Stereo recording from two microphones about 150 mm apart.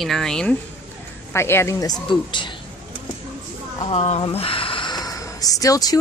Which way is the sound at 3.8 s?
45° left (ahead or behind).